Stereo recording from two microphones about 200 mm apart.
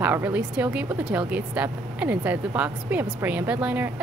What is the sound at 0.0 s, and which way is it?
A woman's voice, 10° right (ahead or behind).